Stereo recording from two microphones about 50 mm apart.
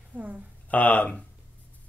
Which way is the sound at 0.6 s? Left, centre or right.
Left.